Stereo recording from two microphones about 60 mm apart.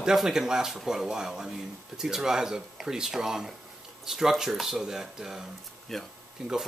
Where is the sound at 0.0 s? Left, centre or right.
Centre.